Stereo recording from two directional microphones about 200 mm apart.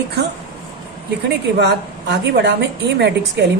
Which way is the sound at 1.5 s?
55° right (ahead or behind).